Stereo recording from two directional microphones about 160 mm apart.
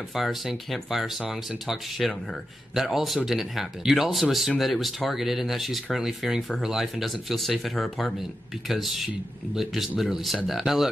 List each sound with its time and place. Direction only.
0.1 s speech: centre (ahead or behind)